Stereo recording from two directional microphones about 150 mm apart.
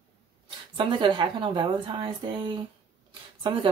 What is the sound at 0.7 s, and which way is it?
Speech, 30° right (ahead or behind).